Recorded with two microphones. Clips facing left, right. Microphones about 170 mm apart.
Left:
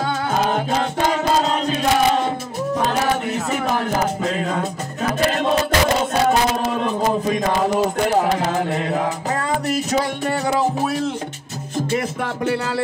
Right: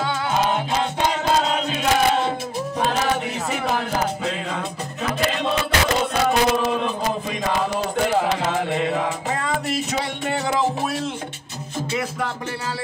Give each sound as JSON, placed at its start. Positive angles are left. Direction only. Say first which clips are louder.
{"t": 0.3, "sound": "music", "louder": "left 1 dB", "side_deg": 45}
{"t": 1.5, "sound": "chant", "louder": "left 2 dB", "side_deg": 40}
{"t": 3.7, "sound": "music", "louder": "left 3 dB", "side_deg": 45}
{"t": 6.2, "sound": "a sound", "louder": "right 2 dB", "side_deg": 45}
{"t": 11.9, "sound": "music", "louder": "left 2 dB", "side_deg": 60}